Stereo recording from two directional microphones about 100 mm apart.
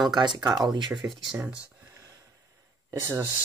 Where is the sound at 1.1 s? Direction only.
Centre (ahead or behind).